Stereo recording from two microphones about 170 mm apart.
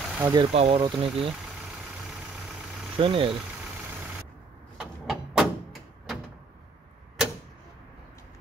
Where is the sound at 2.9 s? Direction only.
30° right (ahead or behind).